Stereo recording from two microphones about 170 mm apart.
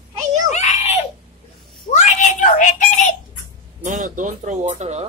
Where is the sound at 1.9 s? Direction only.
45° left (ahead or behind).